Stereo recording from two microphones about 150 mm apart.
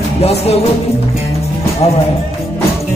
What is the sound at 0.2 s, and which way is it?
Music, 45° left (ahead or behind).